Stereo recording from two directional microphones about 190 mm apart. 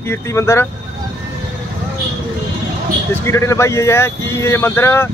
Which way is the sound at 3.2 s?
15° left (ahead or behind).